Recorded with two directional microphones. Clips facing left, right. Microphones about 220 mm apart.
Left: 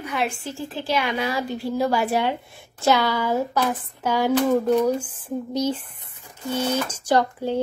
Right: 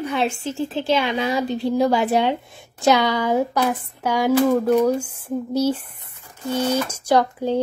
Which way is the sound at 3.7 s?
10° right (ahead or behind).